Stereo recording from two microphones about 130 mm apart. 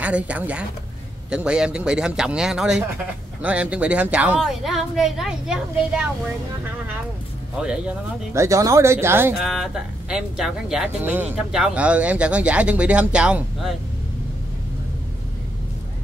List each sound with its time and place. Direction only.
0.0 s a woman's voice: 10° right (ahead or behind)
7.6 s a woman's voice: 5° right (ahead or behind)
8.3 s speech: 25° right (ahead or behind)
9.4 s a woman's voice: centre (ahead or behind)
11.0 s speech: 15° right (ahead or behind)